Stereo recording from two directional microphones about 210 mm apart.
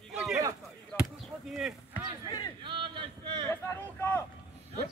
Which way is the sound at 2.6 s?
25° right (ahead or behind).